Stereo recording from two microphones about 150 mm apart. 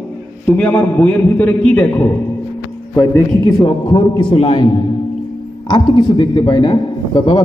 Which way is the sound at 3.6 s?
35° left (ahead or behind).